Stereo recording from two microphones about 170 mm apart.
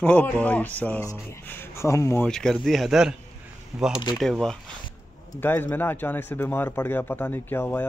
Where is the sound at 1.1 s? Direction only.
15° left (ahead or behind).